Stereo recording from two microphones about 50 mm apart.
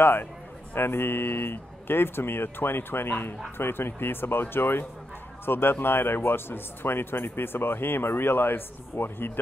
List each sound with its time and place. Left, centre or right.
0.0 s speech: left